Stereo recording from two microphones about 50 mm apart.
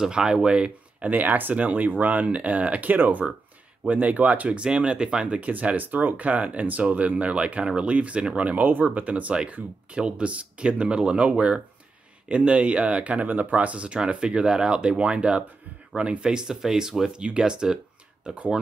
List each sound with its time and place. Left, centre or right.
0.0 s speech: centre
1.1 s speech: right
4.6 s speech: centre
5.4 s speech: right
8.5 s speech: right
8.8 s speech: right